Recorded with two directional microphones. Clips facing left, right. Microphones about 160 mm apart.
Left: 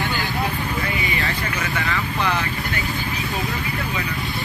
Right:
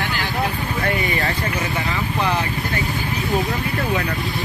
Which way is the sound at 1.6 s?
20° right (ahead or behind).